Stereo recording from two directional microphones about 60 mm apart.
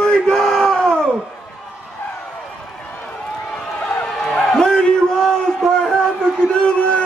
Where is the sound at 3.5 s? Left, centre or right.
Centre.